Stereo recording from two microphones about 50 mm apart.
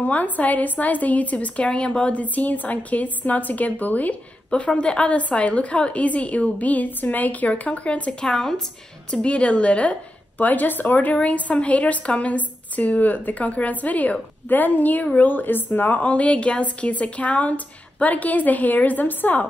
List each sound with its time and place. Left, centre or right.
0.0 s a woman's voice: left
4.5 s a woman's voice: left